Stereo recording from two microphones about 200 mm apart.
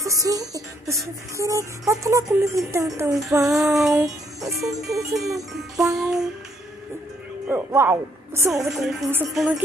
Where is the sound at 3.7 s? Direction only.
Centre (ahead or behind).